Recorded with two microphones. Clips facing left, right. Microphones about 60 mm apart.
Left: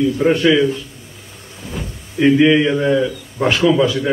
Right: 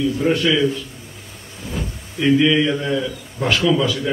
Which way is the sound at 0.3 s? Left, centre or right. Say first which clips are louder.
Left 4 dB; left.